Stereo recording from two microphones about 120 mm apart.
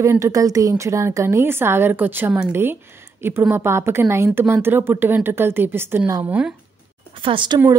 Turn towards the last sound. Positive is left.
turn(degrees=-40)  # may be behind; listen again after turning